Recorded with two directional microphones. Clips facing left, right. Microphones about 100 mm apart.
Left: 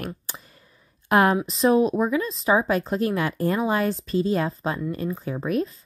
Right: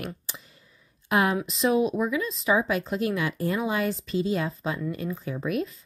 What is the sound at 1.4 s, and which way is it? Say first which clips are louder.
A woman's voice: left 4 dB; 35° left (ahead or behind).